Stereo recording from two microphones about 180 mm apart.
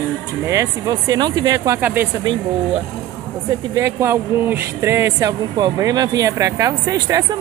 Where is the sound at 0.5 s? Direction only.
20° right (ahead or behind).